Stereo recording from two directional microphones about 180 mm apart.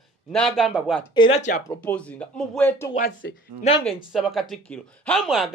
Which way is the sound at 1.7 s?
10° left (ahead or behind).